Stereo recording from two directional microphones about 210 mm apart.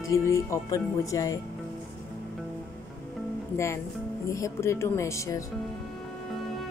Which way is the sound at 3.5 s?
15° left (ahead or behind).